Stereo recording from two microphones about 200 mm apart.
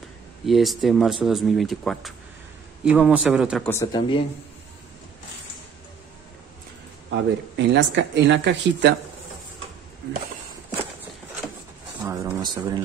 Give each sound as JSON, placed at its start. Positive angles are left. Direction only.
{"t": 0.5, "sound": "speech", "side_deg": 0}
{"t": 3.6, "sound": "speech", "side_deg": 15}
{"t": 7.1, "sound": "speech", "side_deg": -65}
{"t": 12.0, "sound": "speech", "side_deg": -20}